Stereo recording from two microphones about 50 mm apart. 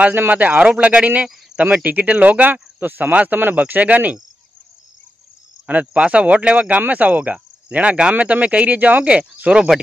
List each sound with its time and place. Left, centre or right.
0.1 s speech: right
5.7 s speech: right